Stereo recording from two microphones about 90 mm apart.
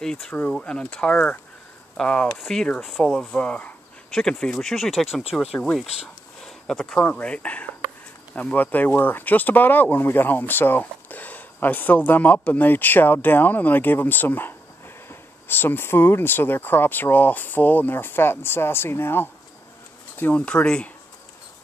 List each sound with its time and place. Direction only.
0.0 s speech: 5° left (ahead or behind)
5.4 s speech: 10° left (ahead or behind)
6.4 s a sound: 5° left (ahead or behind)
7.1 s speech: 15° left (ahead or behind)
20.4 s speech: 10° left (ahead or behind)